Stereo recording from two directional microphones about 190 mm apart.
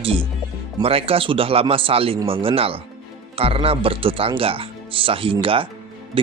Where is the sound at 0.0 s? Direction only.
30° right (ahead or behind).